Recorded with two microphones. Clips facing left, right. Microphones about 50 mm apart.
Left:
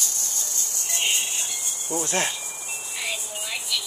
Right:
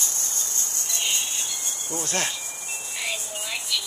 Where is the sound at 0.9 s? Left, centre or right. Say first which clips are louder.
Left 3 dB; left.